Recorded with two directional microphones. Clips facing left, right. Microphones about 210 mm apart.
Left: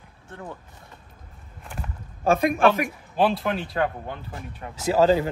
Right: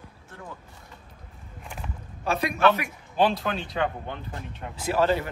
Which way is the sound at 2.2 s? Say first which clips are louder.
Left 4 dB; 50° left (ahead or behind).